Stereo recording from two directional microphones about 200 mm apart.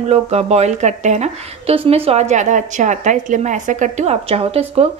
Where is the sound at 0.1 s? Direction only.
30° right (ahead or behind).